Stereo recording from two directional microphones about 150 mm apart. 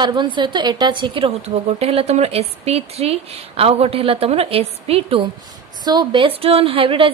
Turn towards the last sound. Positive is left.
turn(degrees=-35)  # may be behind; listen again after turning